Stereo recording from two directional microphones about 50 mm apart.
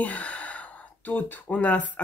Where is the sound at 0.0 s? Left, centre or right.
Left.